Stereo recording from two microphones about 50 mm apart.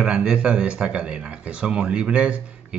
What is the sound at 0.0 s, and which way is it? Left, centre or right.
Speech, centre.